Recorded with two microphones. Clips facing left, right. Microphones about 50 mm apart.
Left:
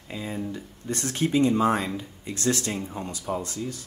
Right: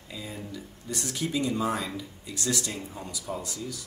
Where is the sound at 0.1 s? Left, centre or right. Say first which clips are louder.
Left 6 dB; left.